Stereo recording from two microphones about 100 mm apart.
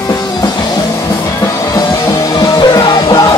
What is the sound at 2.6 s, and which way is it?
Music, 45° left (ahead or behind).